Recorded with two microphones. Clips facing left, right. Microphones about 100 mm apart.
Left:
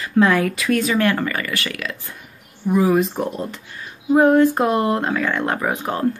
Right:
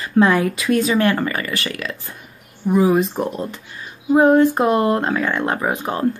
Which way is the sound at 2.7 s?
20° right (ahead or behind).